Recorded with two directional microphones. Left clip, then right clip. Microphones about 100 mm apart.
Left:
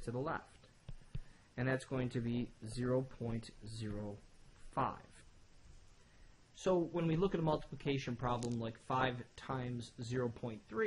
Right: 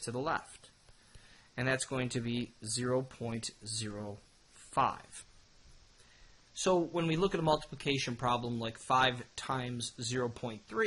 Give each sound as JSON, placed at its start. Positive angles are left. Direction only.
{"t": 0.0, "sound": "speech", "side_deg": -20}
{"t": 1.5, "sound": "speech", "side_deg": -20}
{"t": 6.5, "sound": "speech", "side_deg": -15}